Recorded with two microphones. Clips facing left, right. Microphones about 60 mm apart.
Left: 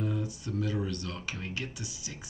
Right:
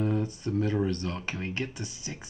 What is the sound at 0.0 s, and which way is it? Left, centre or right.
Speech, right.